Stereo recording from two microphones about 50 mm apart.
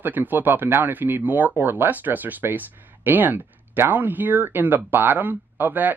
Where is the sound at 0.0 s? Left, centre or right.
Right.